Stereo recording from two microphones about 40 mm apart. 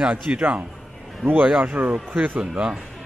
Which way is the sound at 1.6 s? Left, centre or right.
Right.